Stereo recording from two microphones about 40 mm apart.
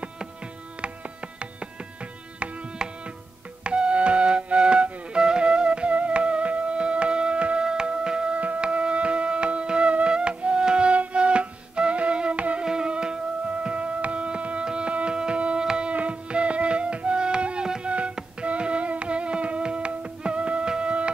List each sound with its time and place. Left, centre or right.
3.6 s flute: right
7.6 s music: right
8.4 s music: right
15.9 s music: right